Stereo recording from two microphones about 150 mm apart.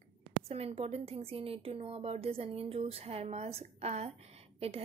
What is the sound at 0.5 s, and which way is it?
A woman's voice, 45° right (ahead or behind).